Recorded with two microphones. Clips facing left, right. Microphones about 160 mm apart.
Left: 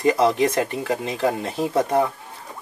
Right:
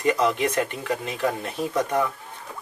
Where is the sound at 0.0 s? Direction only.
35° left (ahead or behind).